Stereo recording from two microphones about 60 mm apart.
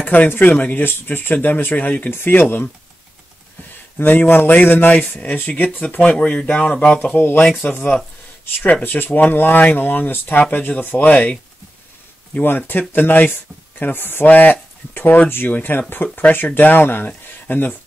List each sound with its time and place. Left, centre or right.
0.0 s speech: left
4.0 s speech: left
5.3 s speech: centre
8.8 s speech: left
12.4 s speech: left